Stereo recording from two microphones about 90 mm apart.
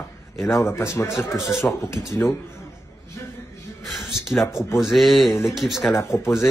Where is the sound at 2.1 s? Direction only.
30° left (ahead or behind).